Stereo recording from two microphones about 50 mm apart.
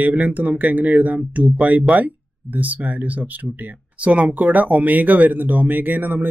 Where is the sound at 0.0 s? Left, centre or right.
Right.